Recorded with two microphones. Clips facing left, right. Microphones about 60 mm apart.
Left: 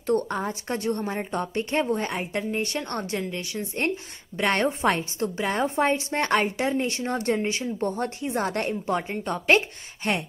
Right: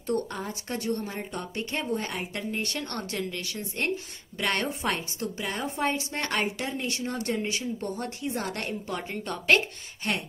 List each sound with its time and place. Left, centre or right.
0.0 s a woman's voice: left
10.0 s speech: left